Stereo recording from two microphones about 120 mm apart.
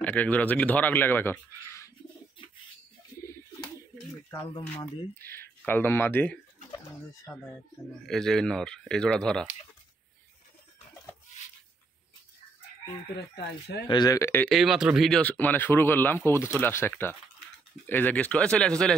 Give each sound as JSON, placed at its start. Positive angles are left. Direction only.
{"t": 0.0, "sound": "speech", "side_deg": 10}
{"t": 5.2, "sound": "speech", "side_deg": 20}
{"t": 13.8, "sound": "speech", "side_deg": 35}
{"t": 14.2, "sound": "speech", "side_deg": 20}
{"t": 14.5, "sound": "speech", "side_deg": 0}